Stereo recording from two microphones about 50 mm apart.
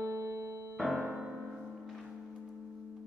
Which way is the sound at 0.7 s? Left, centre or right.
Centre.